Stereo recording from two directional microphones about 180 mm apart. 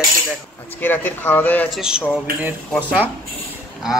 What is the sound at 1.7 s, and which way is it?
Speech, 5° right (ahead or behind).